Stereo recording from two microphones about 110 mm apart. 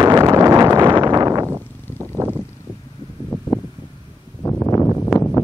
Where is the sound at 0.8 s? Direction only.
40° right (ahead or behind); by 2.2 s 25° right (ahead or behind).